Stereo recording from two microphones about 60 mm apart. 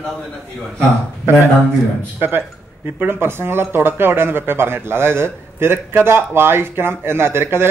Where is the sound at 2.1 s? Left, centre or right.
Right.